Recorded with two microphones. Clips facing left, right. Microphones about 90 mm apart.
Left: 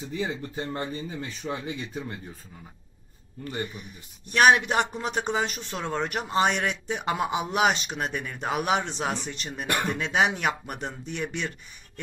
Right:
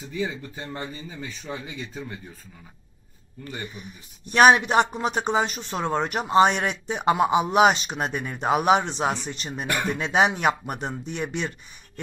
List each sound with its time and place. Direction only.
0.1 s speech: 35° left (ahead or behind)
4.3 s speech: 25° right (ahead or behind)